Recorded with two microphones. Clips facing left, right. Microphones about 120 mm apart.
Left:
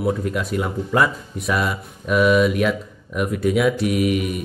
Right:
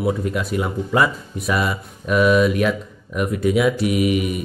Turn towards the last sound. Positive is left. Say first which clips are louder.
# right 1 dB
turn(degrees=-5)  # may be behind; listen again after turning